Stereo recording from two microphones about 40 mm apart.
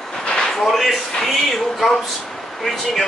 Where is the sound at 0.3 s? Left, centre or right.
Centre.